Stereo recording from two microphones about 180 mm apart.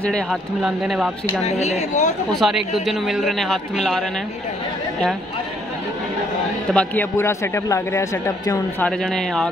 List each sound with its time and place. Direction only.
0.0 s a man's voice: centre (ahead or behind)
1.4 s speech: 40° left (ahead or behind)
2.3 s a man's voice: centre (ahead or behind)
6.7 s a man's voice: 10° left (ahead or behind)
8.8 s a man's voice: centre (ahead or behind)